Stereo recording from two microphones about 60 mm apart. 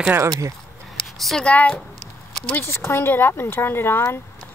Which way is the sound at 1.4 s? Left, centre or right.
Left.